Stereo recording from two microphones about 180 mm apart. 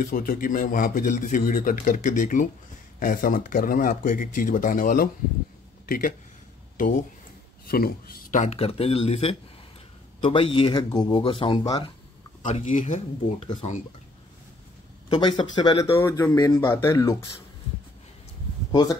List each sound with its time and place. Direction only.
0.0 s a man's voice: 50° left (ahead or behind); by 11.9 s 25° left (ahead or behind)
12.5 s a man's voice: 45° left (ahead or behind)
12.8 s speech: 35° left (ahead or behind)
15.0 s speech: 25° left (ahead or behind)
18.7 s speech: 20° left (ahead or behind)